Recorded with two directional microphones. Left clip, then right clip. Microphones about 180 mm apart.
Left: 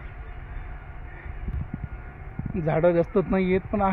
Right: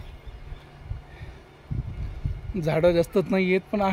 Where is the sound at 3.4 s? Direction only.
60° right (ahead or behind).